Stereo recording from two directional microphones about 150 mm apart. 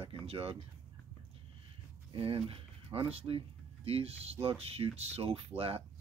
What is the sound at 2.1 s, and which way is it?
Speech, 40° right (ahead or behind).